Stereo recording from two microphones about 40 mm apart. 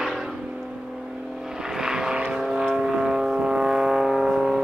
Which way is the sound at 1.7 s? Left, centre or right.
Centre.